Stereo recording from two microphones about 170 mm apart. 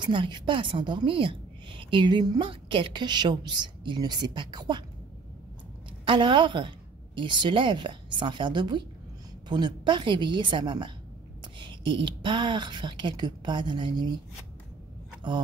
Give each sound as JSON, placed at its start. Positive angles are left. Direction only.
{"t": 0.0, "sound": "a woman's voice", "side_deg": -30}
{"t": 6.0, "sound": "a woman's voice", "side_deg": -30}